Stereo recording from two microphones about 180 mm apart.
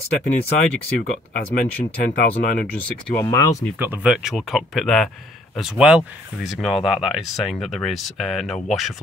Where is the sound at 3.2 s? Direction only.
20° left (ahead or behind).